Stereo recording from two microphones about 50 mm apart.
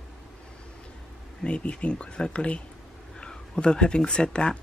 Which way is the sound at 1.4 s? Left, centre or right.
Left.